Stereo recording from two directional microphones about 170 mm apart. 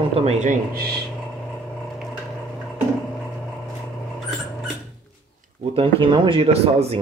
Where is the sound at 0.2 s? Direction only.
40° right (ahead or behind).